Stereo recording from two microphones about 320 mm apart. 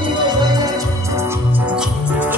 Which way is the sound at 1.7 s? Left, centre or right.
Centre.